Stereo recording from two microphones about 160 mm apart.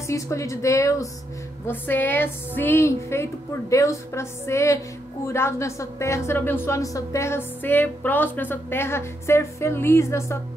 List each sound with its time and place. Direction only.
0.0 s a woman's voice: 20° left (ahead or behind)